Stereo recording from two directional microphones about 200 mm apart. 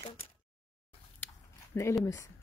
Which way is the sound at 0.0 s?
25° left (ahead or behind).